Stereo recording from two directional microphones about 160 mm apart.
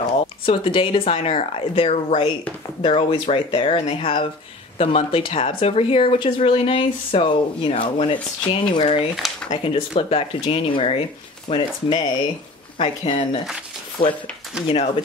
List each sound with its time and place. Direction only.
0.0 s speech: 35° left (ahead or behind)